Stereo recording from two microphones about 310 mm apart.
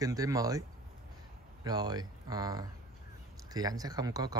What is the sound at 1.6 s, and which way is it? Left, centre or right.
Speech, centre.